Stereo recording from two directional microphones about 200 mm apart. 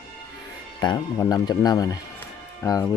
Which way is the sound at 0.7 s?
20° left (ahead or behind).